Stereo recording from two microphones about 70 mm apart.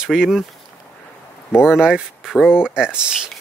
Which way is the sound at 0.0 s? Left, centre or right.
Centre.